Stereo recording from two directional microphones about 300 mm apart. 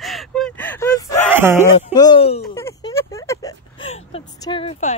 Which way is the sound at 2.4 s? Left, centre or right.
Centre.